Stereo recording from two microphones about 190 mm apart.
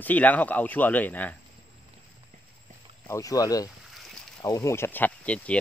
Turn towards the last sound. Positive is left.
turn(degrees=10)  # may be behind; listen again after turning